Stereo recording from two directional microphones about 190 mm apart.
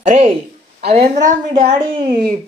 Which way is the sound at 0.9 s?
35° right (ahead or behind).